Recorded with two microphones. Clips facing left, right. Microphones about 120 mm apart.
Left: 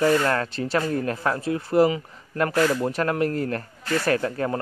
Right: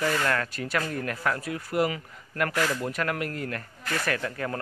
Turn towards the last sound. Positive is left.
turn(degrees=30)  # may be behind; listen again after turning